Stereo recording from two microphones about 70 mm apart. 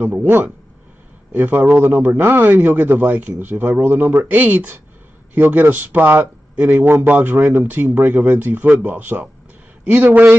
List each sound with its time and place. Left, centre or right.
0.0 s speech: right